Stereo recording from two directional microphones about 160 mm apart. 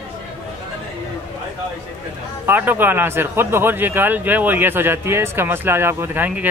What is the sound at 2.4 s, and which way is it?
Speech, 10° right (ahead or behind).